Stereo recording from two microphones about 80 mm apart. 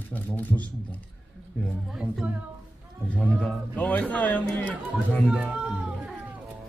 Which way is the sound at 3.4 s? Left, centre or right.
Centre.